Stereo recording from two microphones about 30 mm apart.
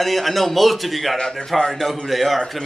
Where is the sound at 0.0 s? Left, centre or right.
Centre.